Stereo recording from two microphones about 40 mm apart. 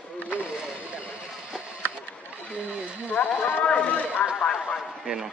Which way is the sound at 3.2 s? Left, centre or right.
Left.